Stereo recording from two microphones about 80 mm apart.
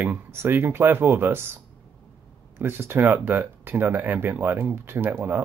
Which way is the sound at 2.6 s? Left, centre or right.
Right.